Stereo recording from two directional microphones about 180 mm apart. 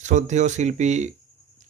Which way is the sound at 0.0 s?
40° right (ahead or behind).